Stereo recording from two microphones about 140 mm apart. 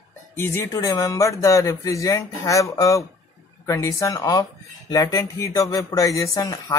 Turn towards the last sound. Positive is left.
turn(degrees=20)  # may be behind; listen again after turning